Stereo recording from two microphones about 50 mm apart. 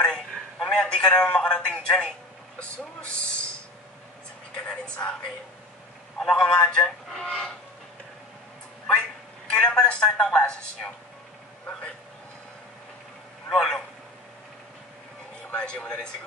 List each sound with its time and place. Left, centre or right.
0.0 s a man's voice: centre
4.6 s a woman's voice: left
6.1 s a man's voice: centre
9.5 s a woman's voice: left
13.5 s a man's voice: centre
15.5 s a woman's voice: left